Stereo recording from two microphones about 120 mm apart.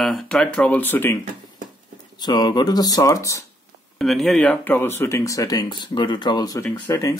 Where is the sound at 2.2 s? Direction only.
35° left (ahead or behind).